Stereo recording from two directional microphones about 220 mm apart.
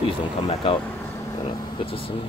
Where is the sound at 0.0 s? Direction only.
25° left (ahead or behind).